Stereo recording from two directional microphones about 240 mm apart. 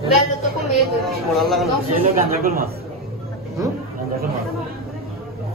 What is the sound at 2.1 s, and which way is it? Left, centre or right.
Speech, right.